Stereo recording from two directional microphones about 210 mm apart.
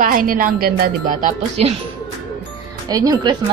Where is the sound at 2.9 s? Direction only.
20° right (ahead or behind).